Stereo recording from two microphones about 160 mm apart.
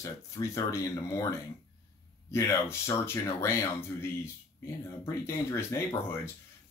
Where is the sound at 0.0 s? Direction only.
20° left (ahead or behind).